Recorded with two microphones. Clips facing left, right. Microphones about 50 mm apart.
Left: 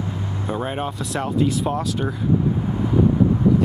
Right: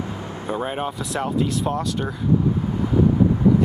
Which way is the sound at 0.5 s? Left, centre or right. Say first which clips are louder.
Right 1 dB; centre.